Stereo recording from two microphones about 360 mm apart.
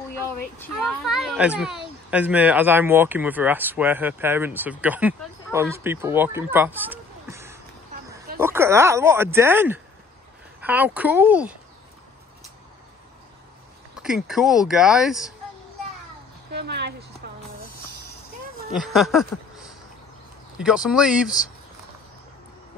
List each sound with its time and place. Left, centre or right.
0.6 s speech: centre
14.0 s speech: centre
16.5 s speech: right
18.7 s speech: centre
20.5 s speech: centre